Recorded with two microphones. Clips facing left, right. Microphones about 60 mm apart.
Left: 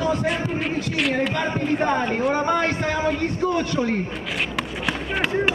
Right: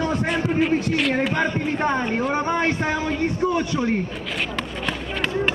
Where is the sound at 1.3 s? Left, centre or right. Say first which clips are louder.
Even; right.